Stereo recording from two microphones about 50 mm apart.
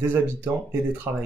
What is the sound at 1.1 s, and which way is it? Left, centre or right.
Speech, right.